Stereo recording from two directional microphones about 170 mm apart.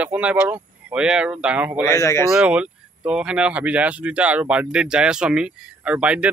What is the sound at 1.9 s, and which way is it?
Speech, 15° left (ahead or behind).